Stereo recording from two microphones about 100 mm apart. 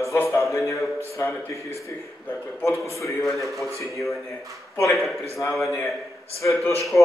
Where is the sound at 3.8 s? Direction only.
30° left (ahead or behind).